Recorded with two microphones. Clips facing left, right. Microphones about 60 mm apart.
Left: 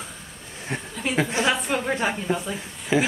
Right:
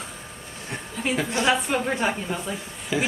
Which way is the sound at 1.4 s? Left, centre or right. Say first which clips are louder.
Right 1 dB; centre.